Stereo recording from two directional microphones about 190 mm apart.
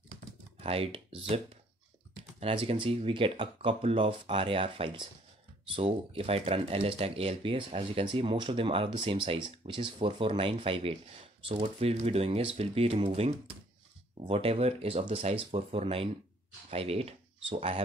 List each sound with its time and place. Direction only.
0.6 s speech: 30° right (ahead or behind)